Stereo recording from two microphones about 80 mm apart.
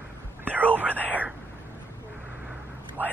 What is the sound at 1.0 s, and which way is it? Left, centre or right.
Whispering, right.